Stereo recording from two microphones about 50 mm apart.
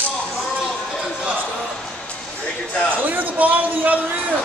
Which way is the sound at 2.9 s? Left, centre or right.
Right.